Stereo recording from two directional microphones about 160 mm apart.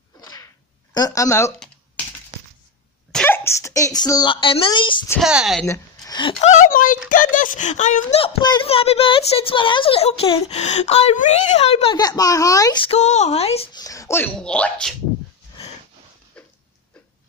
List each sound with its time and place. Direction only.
0.2 s whip: 25° left (ahead or behind)
0.9 s speech: 20° left (ahead or behind)
3.1 s a child's voice: 10° left (ahead or behind); by 5.0 s 30° left (ahead or behind)
5.2 s a woman's voice: 5° right (ahead or behind)
5.7 s a sound: 25° left (ahead or behind)
6.4 s speech: 55° left (ahead or behind)
8.2 s a child's voice: 30° left (ahead or behind)
11.9 s speech: 25° left (ahead or behind)
12.8 s a child's voice: 45° left (ahead or behind)
13.7 s speech: 20° left (ahead or behind); by 15.0 s 5° left (ahead or behind)